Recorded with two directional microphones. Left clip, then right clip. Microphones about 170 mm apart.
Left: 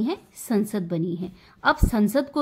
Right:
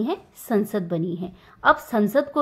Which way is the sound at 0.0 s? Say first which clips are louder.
Right 1 dB; 25° left (ahead or behind).